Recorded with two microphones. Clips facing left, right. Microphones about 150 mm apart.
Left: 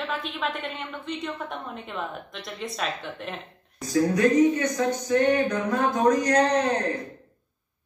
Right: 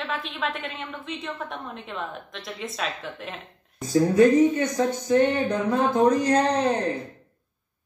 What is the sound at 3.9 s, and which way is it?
Speech, 25° right (ahead or behind).